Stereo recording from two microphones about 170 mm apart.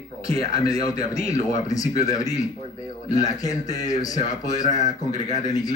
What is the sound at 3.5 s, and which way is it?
Speech, 45° left (ahead or behind).